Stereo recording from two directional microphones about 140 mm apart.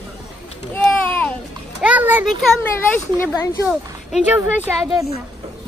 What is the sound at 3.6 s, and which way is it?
Speech, 10° right (ahead or behind).